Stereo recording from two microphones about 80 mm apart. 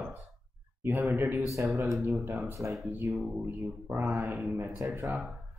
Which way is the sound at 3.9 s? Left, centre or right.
Right.